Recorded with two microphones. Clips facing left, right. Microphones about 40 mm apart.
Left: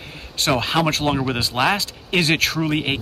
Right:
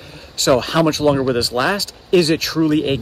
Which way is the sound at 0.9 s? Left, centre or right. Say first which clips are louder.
Right 5 dB; left.